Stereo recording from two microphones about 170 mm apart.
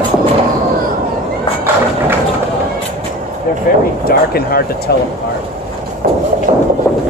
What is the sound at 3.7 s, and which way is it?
Speech, 55° left (ahead or behind).